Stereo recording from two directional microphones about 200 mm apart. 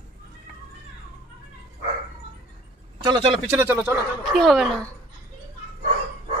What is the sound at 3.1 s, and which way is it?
Speech, 25° right (ahead or behind).